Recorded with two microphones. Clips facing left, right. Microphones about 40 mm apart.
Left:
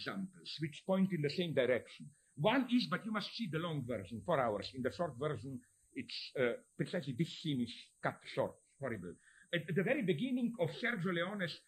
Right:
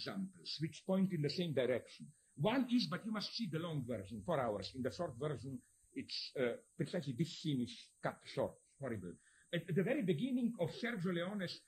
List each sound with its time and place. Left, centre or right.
0.0 s speech: left